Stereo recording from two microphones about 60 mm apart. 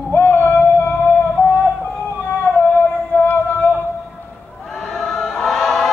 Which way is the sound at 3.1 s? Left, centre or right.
Left.